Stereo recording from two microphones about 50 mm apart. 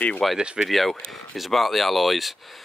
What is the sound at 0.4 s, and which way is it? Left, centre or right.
Speech, centre.